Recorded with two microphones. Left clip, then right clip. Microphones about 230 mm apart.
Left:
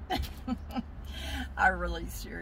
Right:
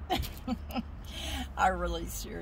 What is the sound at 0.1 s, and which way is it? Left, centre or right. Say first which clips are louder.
Speech: right 1 dB; centre.